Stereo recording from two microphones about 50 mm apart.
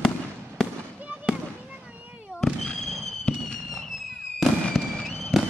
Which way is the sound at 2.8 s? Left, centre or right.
Centre.